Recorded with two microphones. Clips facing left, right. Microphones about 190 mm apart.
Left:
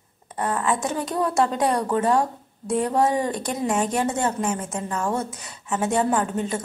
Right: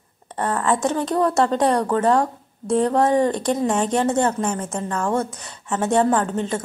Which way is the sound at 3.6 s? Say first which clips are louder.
Right 1 dB; 5° left (ahead or behind).